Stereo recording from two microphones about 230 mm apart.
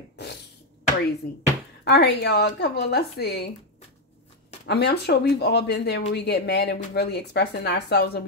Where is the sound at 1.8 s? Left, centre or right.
Left.